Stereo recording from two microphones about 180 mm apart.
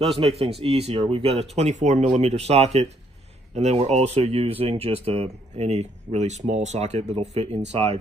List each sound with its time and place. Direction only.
0.0 s speech: 35° right (ahead or behind)